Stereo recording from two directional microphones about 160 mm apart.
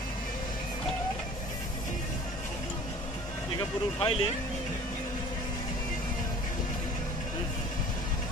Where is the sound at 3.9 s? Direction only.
35° left (ahead or behind).